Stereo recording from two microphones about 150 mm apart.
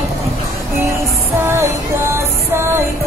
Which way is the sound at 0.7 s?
15° right (ahead or behind).